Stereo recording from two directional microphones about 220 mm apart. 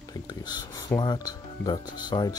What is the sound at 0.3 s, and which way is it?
Speech, 20° left (ahead or behind).